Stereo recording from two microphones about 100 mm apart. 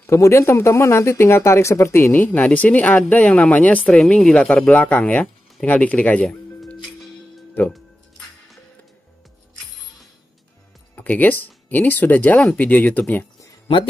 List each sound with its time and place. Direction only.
0.0 s speech: 25° left (ahead or behind)
11.0 s speech: 15° left (ahead or behind)